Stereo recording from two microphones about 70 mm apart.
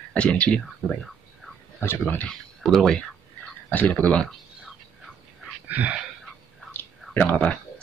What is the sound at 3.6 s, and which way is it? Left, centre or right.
Speech, left.